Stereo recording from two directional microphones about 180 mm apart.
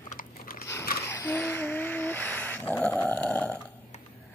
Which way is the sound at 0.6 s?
15° left (ahead or behind).